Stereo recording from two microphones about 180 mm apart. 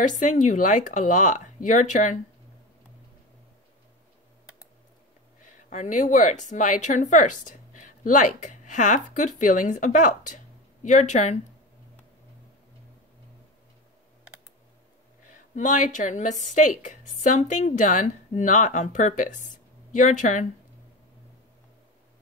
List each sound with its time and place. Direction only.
0.0 s a woman's voice: 45° left (ahead or behind)
5.7 s speech: 45° left (ahead or behind)
15.5 s a woman's voice: 45° left (ahead or behind)